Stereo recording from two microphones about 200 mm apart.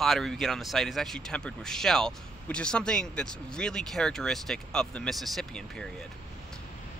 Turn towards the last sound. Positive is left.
turn(degrees=0)  # may be behind; listen again after turning